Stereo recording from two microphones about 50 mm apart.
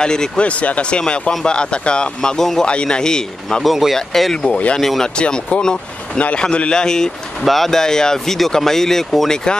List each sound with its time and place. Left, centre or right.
0.0 s speech: centre
0.4 s speech: left; by 2.6 s centre
2.6 s speech: centre
3.6 s speech: centre
3.9 s speech: centre
5.1 s speech: left